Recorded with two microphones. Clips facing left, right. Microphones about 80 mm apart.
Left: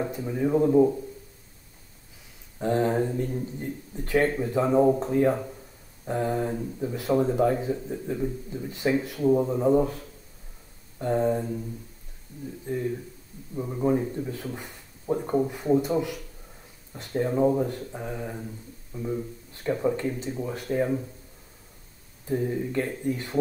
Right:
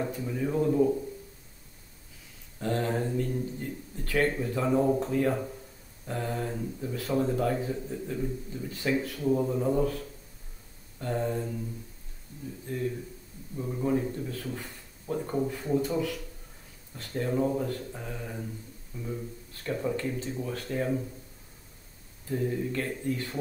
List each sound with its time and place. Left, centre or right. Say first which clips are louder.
0.0 s speech: left 4 dB; centre
2.6 s speech: left 5 dB; centre
12.6 s speech: left 3 dB; centre
22.2 s speech: left 3 dB; centre